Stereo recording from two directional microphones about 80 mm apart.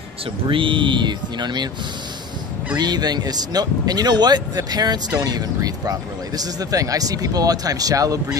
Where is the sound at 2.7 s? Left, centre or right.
Right.